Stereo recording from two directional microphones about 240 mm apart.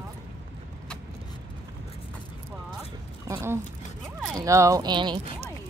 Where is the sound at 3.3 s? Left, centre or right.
Centre.